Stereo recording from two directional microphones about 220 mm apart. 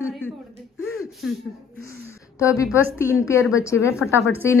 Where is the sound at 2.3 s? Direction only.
15° left (ahead or behind).